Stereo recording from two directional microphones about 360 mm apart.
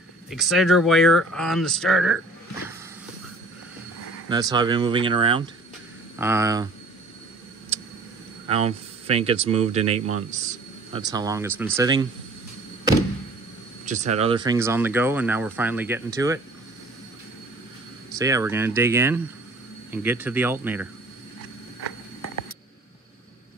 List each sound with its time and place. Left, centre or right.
0.3 s speech: centre
4.3 s speech: centre
8.5 s speech: centre
13.8 s speech: centre
18.1 s speech: centre